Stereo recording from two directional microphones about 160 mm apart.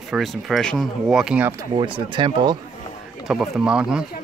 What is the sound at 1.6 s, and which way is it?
Speech, 30° right (ahead or behind).